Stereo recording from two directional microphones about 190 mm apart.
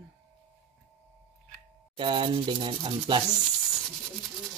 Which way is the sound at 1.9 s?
25° right (ahead or behind).